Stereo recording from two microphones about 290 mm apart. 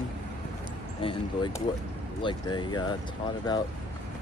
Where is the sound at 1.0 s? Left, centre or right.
Centre.